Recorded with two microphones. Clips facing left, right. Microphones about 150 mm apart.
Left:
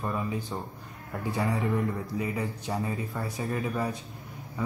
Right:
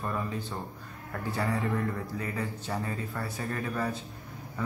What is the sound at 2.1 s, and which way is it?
Speech, 15° left (ahead or behind).